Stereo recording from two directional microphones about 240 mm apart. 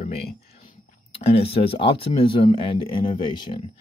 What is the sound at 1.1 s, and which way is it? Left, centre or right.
Speech, left.